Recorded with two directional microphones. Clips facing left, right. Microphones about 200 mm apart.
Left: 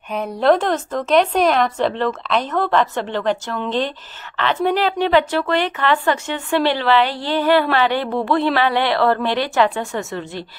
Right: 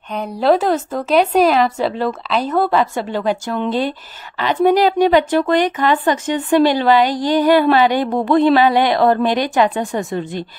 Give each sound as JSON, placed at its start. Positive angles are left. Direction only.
{"t": 0.1, "sound": "speech", "side_deg": 0}